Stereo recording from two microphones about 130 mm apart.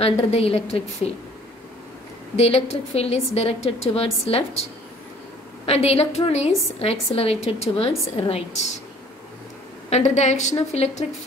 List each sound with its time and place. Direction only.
0.0 s a woman's voice: 50° left (ahead or behind)
2.3 s a woman's voice: 55° left (ahead or behind)
5.7 s a woman's voice: 55° left (ahead or behind)
9.8 s a woman's voice: 60° left (ahead or behind)